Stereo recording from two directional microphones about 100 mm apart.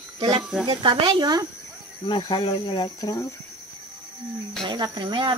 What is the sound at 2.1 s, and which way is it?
Speech, 60° left (ahead or behind).